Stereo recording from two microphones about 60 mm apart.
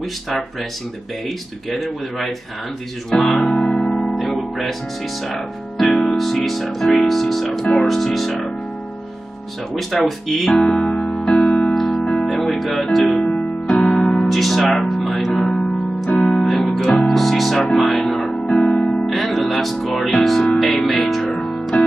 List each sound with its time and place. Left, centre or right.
0.3 s speech: centre
3.5 s music: centre
4.1 s music: centre
5.2 s speech: centre
9.8 s speech: centre
10.9 s music: centre
12.0 s music: centre
12.3 s music: centre
13.2 s music: centre
13.8 s music: centre
19.0 s music: centre
20.2 s speech: centre